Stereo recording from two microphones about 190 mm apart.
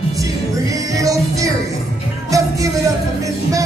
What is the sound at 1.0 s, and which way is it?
Music, 15° right (ahead or behind).